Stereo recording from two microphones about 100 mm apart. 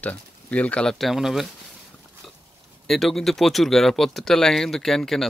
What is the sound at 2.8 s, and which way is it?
Speech, centre (ahead or behind).